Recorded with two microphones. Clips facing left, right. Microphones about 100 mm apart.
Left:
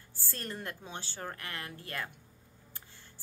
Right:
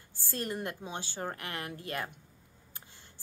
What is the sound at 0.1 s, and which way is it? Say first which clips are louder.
A woman's voice: right 5 dB; 15° right (ahead or behind).